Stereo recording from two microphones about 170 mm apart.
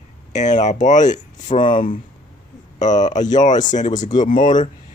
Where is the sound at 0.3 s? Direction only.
45° left (ahead or behind).